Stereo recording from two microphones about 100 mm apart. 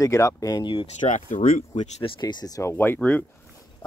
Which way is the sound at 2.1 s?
45° left (ahead or behind).